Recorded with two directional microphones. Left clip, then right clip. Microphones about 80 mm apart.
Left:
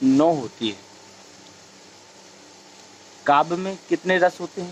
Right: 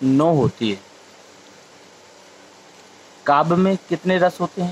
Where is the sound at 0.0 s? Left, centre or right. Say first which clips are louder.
Right 2 dB; right.